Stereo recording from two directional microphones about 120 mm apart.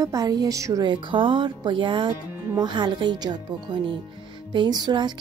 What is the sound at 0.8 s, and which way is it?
A woman's voice, 45° right (ahead or behind).